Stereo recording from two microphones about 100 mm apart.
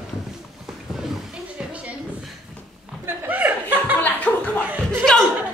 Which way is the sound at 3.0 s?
15° right (ahead or behind).